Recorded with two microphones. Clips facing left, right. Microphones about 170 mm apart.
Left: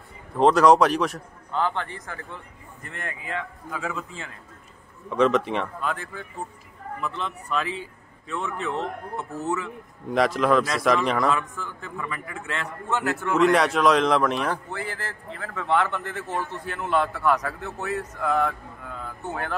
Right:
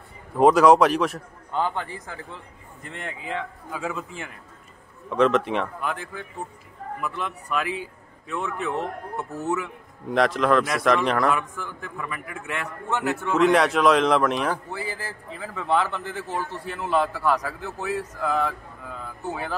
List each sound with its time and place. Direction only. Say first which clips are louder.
0.4 s a man's voice: right 1 dB; 5° right (ahead or behind)
1.5 s a man's voice: even; 15° right (ahead or behind)
3.3 s a man's voice: right 2 dB; 15° right (ahead or behind)
5.1 s a man's voice: right 1 dB; centre (ahead or behind)
5.8 s a man's voice: even; 15° right (ahead or behind)
10.0 s a man's voice: even; centre (ahead or behind); by 13.3 s 15° right (ahead or behind)
13.3 s a man's voice: right 1 dB; centre (ahead or behind)